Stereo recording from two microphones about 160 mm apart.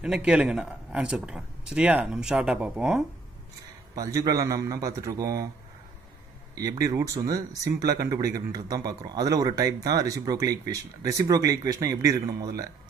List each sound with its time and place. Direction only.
0.0 s speech: 5° right (ahead or behind)
3.9 s speech: 20° right (ahead or behind)
6.5 s speech: 20° right (ahead or behind)